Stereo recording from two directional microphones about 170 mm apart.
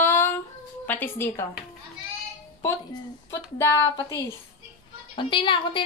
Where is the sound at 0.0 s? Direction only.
15° left (ahead or behind).